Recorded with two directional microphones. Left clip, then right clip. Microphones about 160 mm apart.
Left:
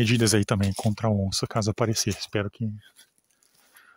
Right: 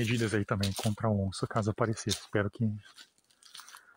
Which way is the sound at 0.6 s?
5° left (ahead or behind).